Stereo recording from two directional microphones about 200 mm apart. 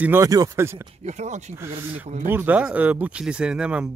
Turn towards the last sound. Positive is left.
turn(degrees=-5)  # may be behind; listen again after turning